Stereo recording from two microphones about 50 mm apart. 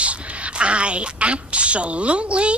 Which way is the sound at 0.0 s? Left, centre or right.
Right.